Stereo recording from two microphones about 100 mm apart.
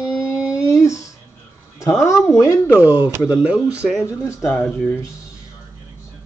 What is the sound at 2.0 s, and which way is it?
Speech, 30° left (ahead or behind).